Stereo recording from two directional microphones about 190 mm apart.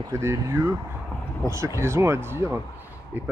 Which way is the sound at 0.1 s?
15° right (ahead or behind).